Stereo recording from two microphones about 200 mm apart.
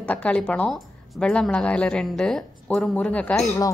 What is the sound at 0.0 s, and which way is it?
A woman's voice, 5° left (ahead or behind).